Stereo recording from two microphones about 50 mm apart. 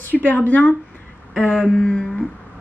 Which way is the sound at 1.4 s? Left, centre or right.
Centre.